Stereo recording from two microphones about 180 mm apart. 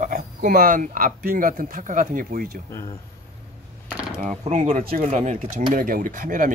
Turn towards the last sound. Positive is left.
turn(degrees=-50)  # may be behind; listen again after turning